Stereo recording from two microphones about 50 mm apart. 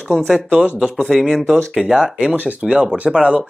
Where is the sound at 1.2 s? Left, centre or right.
Centre.